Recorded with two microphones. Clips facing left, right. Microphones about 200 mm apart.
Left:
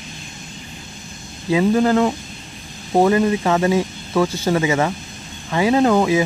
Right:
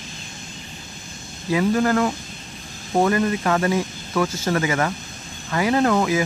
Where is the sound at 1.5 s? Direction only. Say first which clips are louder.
Left 3 dB; 20° left (ahead or behind).